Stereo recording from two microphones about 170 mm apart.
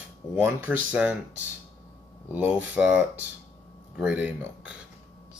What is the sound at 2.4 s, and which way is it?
Speech, 10° right (ahead or behind).